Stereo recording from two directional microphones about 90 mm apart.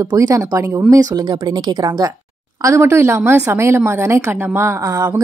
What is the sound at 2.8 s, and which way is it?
A woman's voice, 25° right (ahead or behind).